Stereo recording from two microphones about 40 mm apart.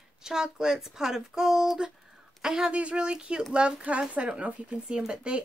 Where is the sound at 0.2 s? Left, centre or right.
Centre.